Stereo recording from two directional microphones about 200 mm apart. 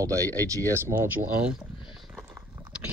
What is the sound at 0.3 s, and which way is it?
Speech, 10° left (ahead or behind).